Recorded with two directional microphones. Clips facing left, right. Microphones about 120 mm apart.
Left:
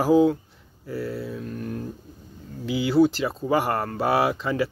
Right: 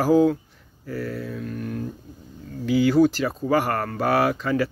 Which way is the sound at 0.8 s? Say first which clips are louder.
Even; 30° left (ahead or behind).